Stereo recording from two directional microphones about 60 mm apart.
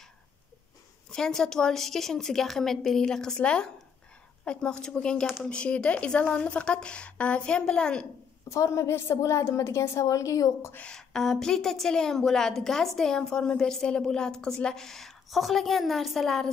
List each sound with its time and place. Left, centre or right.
1.1 s a woman's voice: centre
8.5 s a woman's voice: left
9.2 s a woman's voice: left
10.9 s a woman's voice: centre